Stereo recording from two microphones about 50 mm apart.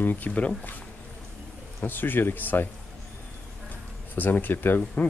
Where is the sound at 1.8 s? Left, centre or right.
Left.